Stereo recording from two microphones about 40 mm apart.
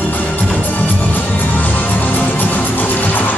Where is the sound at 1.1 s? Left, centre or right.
Left.